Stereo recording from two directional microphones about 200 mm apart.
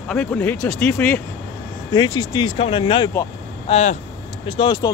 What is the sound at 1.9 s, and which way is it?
Speech, 20° left (ahead or behind).